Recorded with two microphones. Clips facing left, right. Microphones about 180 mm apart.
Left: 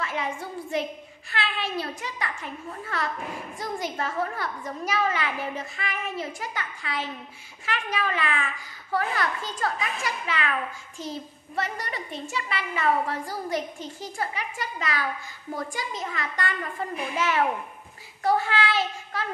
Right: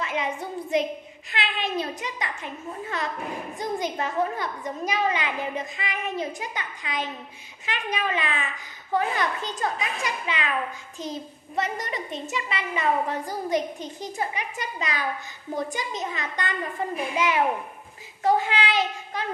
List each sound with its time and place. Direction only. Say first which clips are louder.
0.0 s a child's voice: right 2 dB; 20° right (ahead or behind)
18.2 s child singing: right 1 dB; 20° right (ahead or behind)